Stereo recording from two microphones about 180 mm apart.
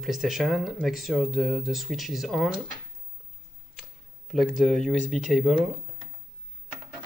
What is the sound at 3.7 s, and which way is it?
Speech, centre (ahead or behind).